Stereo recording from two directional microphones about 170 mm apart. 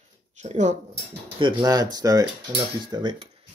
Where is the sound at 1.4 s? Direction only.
30° right (ahead or behind).